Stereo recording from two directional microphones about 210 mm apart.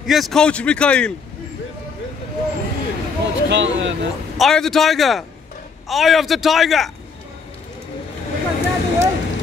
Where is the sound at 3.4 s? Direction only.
60° right (ahead or behind).